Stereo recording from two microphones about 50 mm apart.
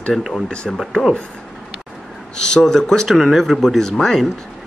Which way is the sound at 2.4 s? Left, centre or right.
Centre.